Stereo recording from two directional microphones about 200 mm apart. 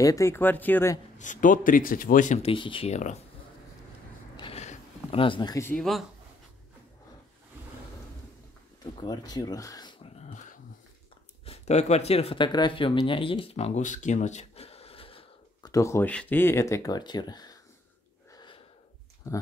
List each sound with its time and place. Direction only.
0.0 s speech: 15° left (ahead or behind)
1.1 s speech: 40° left (ahead or behind)
4.4 s a sound: 30° left (ahead or behind); by 6.0 s centre (ahead or behind)
9.0 s speech: 20° left (ahead or behind)
10.1 s a sound: 35° left (ahead or behind)
11.4 s speech: 30° left (ahead or behind)
18.3 s gasp: 20° left (ahead or behind)
19.2 s speech: 15° left (ahead or behind)